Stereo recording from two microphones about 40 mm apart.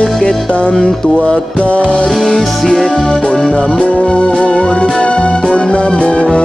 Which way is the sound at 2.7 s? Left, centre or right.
Centre.